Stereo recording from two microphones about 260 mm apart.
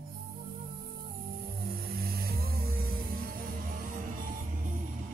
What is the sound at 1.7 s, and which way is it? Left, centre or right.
Music, right.